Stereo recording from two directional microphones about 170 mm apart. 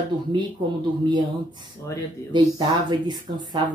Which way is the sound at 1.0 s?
25° right (ahead or behind).